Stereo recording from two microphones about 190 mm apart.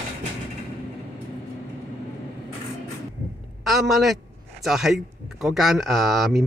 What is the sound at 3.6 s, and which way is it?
A man's voice, centre (ahead or behind).